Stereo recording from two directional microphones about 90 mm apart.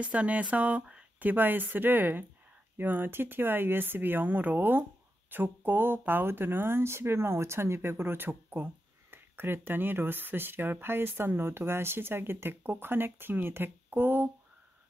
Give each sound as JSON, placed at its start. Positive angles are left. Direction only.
{"t": 0.0, "sound": "speech", "side_deg": -15}